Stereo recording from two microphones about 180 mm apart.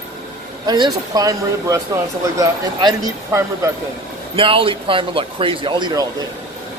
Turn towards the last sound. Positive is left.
turn(degrees=-25)  # may be behind; listen again after turning